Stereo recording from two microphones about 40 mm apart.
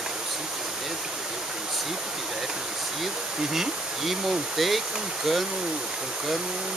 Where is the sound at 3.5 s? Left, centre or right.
Centre.